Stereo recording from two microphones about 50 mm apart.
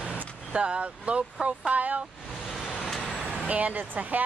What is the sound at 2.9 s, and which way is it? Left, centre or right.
Vehicle, centre.